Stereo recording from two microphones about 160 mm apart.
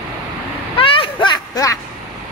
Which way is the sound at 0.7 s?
35° left (ahead or behind).